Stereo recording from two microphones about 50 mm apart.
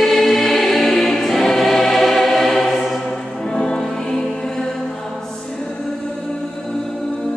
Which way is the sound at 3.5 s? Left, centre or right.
Centre.